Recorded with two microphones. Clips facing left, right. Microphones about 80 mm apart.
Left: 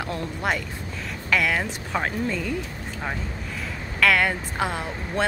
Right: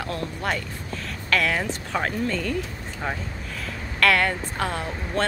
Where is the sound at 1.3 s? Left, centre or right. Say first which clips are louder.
Even; centre.